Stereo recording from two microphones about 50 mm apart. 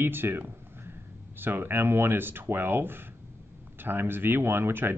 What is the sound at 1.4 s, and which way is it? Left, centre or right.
Speech, right.